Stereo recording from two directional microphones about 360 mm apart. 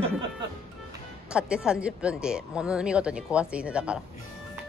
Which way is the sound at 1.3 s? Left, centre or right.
Centre.